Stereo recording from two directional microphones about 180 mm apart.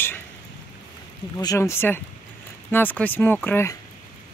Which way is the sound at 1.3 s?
20° left (ahead or behind).